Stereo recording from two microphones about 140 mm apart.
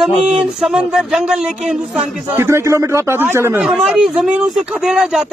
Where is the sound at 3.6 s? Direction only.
5° right (ahead or behind).